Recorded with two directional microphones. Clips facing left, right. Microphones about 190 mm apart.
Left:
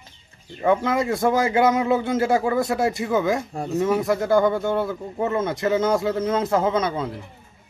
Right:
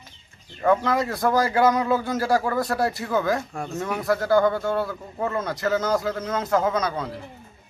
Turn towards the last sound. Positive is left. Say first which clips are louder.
# left 2 dB
turn(degrees=25)  # may be behind; listen again after turning